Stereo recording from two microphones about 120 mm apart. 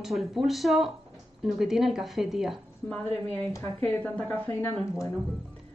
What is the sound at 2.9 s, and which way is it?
Speech, 15° left (ahead or behind).